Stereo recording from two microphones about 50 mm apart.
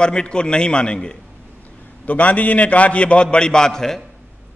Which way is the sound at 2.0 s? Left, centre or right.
Left.